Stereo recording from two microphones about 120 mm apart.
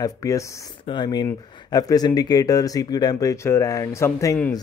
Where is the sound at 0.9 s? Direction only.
35° left (ahead or behind).